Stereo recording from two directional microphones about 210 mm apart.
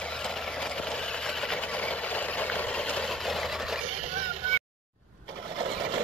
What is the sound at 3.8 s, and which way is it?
Vehicle, 35° right (ahead or behind).